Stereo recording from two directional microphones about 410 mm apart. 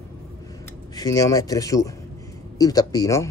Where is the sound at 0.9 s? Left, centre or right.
Centre.